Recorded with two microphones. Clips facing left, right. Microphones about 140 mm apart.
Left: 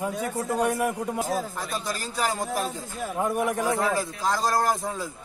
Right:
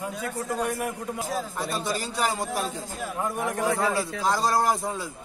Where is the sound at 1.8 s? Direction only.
Centre (ahead or behind).